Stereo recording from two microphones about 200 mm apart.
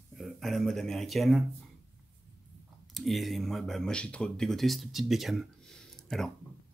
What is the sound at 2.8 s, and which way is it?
Speech, centre (ahead or behind).